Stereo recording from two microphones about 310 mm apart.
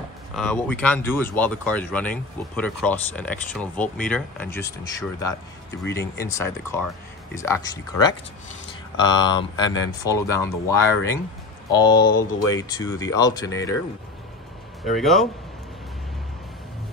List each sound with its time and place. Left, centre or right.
0.4 s speech: centre
8.9 s speech: centre
12.0 s speech: left
12.5 s speech: centre
14.9 s speech: centre